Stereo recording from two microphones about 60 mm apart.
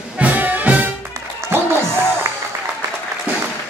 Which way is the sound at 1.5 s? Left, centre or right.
Right.